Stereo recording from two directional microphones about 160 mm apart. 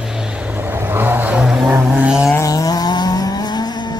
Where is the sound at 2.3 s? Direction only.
20° left (ahead or behind).